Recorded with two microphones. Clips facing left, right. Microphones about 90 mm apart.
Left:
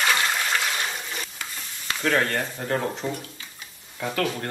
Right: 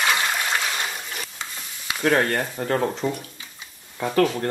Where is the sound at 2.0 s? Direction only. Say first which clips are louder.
Right 3 dB; 35° right (ahead or behind).